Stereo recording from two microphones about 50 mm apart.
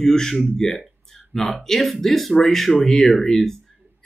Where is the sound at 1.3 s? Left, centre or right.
Centre.